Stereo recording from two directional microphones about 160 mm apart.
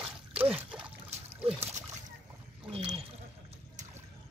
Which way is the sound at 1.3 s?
10° right (ahead or behind).